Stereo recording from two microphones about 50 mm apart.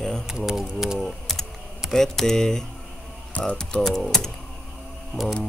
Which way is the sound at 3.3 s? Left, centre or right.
Left.